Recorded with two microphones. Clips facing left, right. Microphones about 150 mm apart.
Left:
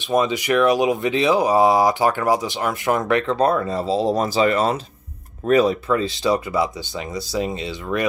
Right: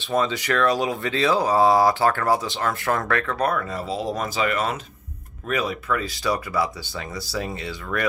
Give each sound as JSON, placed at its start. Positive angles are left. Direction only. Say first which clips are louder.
{"t": 0.0, "sound": "speech", "louder": "left 4 dB", "side_deg": 15}